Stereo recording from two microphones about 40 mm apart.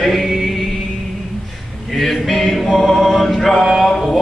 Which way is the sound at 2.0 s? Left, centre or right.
Centre.